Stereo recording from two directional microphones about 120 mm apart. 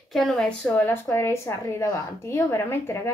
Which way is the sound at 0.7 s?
15° left (ahead or behind).